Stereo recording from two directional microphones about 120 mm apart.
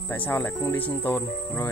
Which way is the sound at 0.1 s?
15° left (ahead or behind).